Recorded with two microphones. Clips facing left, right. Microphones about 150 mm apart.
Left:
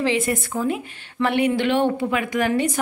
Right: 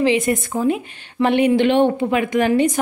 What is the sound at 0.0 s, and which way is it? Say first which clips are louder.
A woman's voice: right 4 dB; 20° right (ahead or behind).